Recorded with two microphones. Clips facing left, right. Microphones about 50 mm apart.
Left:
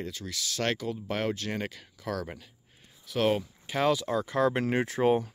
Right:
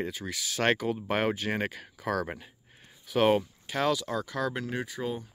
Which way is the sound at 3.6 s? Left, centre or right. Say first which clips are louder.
Left 5 dB; centre.